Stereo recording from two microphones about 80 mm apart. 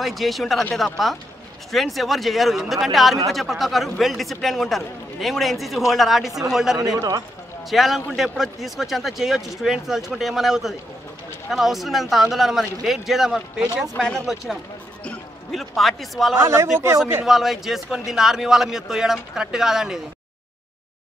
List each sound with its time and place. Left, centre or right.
0.0 s a man's voice: centre
7.0 s a man's voice: right
7.7 s a man's voice: centre
13.9 s speech: centre
15.5 s a man's voice: centre
16.3 s a man's voice: right
17.2 s a man's voice: centre